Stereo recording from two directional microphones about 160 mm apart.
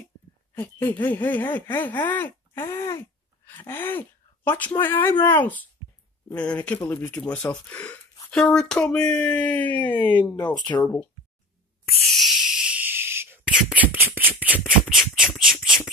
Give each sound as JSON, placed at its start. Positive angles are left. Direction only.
{"t": 0.6, "sound": "speech", "side_deg": 10}
{"t": 10.1, "sound": "speech", "side_deg": 25}
{"t": 12.1, "sound": "a sound", "side_deg": 0}